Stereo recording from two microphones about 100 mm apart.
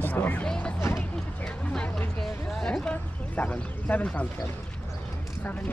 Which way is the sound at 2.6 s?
10° left (ahead or behind).